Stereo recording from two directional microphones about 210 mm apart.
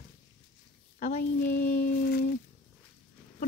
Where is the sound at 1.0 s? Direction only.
35° left (ahead or behind).